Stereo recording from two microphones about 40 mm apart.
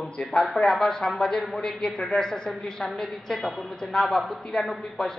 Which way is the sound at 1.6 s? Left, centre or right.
Centre.